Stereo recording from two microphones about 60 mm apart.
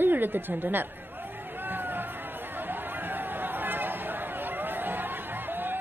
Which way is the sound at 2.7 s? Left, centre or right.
Right.